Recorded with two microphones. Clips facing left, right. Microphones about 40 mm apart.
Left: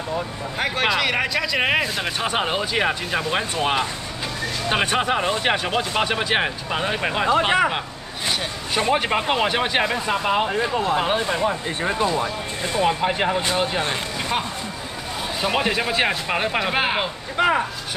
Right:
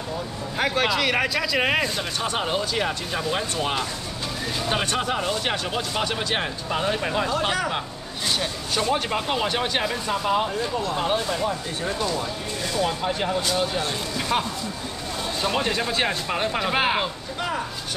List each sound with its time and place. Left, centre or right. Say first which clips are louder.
0.6 s speech: left 1 dB; centre
2.2 s speech: left 2 dB; left
14.3 s speech: right 2 dB; centre
17.4 s speech: left 9 dB; left